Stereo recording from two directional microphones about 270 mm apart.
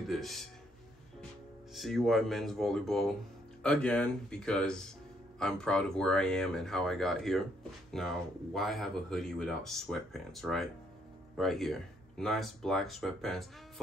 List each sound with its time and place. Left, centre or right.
0.1 s speech: centre
1.7 s speech: centre